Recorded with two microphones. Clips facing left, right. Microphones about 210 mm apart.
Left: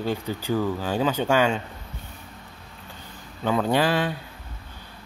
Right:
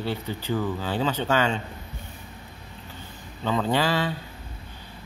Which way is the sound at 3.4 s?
10° left (ahead or behind).